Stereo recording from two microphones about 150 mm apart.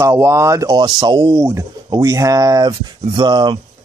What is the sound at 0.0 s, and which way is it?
Speech, 20° right (ahead or behind).